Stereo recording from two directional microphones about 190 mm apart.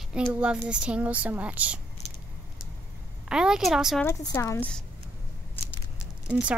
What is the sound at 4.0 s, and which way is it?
Speech, 15° left (ahead or behind).